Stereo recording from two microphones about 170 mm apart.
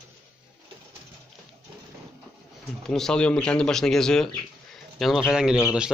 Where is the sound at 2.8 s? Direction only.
5° left (ahead or behind).